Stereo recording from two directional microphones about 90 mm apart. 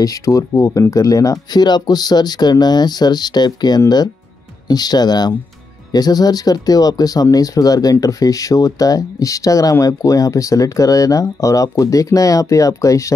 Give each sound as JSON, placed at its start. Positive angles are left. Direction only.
{"t": 0.0, "sound": "speech", "side_deg": 40}